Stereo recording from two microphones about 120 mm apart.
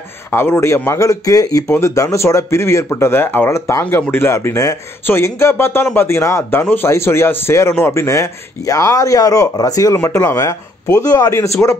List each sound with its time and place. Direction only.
0.3 s speech: 20° left (ahead or behind)